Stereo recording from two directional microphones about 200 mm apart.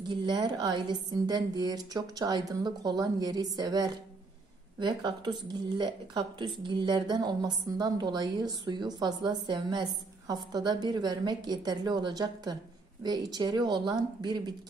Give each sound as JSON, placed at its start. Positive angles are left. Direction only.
{"t": 0.1, "sound": "speech", "side_deg": -20}